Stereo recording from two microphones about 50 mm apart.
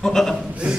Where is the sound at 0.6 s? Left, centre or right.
Right.